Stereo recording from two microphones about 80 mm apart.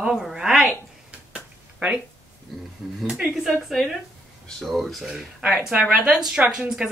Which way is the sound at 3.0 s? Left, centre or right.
Centre.